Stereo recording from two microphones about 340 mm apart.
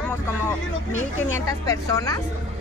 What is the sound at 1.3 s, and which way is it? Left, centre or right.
Speech, centre.